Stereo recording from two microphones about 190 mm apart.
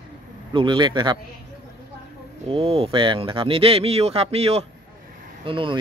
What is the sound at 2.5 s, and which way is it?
Speech, 30° right (ahead or behind).